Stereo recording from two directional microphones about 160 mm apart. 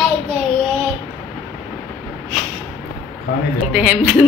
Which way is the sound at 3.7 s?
10° right (ahead or behind).